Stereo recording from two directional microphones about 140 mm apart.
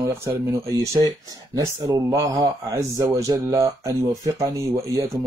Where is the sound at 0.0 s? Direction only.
20° right (ahead or behind).